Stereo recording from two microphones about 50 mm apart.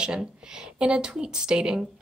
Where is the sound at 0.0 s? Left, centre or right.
Centre.